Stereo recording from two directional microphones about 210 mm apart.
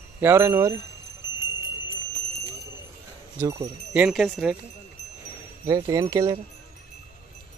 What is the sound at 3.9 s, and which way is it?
Speech, 5° right (ahead or behind).